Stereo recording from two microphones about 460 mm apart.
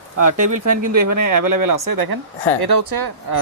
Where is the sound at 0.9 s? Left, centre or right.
Right.